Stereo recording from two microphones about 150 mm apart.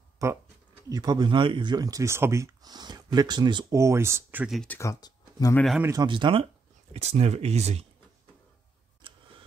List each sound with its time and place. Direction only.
0.2 s speech: 20° right (ahead or behind)
3.7 s speech: 20° right (ahead or behind)
4.6 s speech: 20° left (ahead or behind)
5.8 s speech: 20° right (ahead or behind)
6.0 s speech: 35° right (ahead or behind)
6.9 s speech: 45° right (ahead or behind)
9.0 s tick: 30° right (ahead or behind)